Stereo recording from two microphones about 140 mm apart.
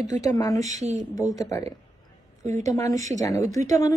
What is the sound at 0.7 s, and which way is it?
Speech, 55° right (ahead or behind).